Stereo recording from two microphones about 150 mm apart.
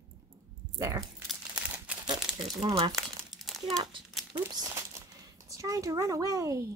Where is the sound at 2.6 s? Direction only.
40° right (ahead or behind).